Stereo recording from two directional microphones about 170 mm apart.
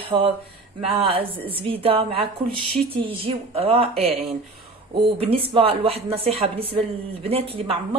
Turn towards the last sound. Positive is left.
turn(degrees=-35)  # may be behind; listen again after turning